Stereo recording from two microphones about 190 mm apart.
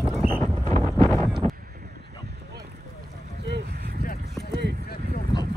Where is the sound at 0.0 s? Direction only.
5° right (ahead or behind).